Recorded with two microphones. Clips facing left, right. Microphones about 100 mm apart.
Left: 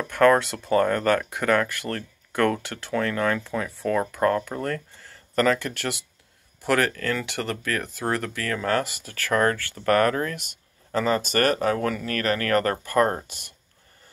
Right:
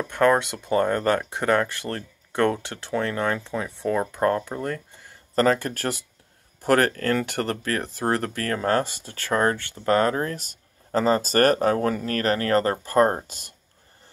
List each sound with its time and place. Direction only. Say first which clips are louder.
0.1 s speech: left 2 dB; 20° right (ahead or behind)
5.3 s speech: right 1 dB; 35° right (ahead or behind)